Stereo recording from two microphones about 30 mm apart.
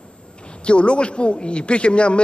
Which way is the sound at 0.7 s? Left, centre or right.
Left.